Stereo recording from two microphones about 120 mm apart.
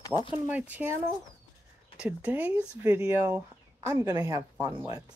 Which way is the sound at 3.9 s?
35° right (ahead or behind).